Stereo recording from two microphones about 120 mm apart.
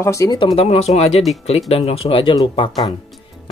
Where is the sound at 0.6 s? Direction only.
65° left (ahead or behind).